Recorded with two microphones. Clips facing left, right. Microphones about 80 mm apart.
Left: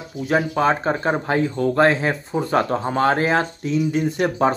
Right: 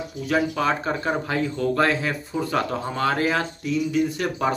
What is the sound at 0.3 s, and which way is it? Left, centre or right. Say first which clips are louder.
Speech: left 4 dB; left.